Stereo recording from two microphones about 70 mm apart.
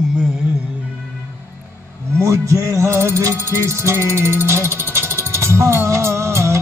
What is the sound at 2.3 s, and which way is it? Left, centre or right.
Music, right.